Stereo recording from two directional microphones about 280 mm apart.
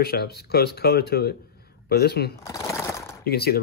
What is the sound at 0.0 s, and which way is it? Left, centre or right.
Speech, left.